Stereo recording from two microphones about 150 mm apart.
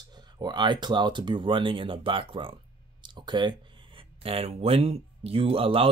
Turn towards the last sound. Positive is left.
turn(degrees=-40)  # may be behind; listen again after turning